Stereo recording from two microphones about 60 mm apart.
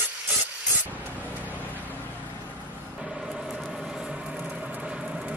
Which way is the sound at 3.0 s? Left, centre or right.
Centre.